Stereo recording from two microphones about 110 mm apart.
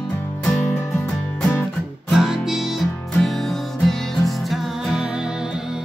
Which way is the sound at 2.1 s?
5° right (ahead or behind).